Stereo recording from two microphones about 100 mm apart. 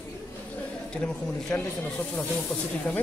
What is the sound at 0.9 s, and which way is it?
Speech, 10° left (ahead or behind).